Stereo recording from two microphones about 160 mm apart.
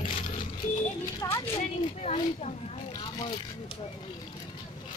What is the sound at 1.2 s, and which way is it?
Speech, 20° left (ahead or behind).